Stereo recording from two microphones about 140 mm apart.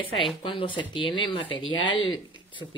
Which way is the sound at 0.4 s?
40° left (ahead or behind).